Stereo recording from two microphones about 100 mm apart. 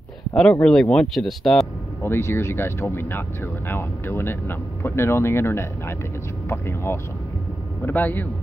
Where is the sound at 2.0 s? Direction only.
25° left (ahead or behind).